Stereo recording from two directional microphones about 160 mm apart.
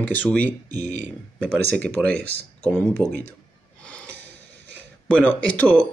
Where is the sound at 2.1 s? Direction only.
85° right.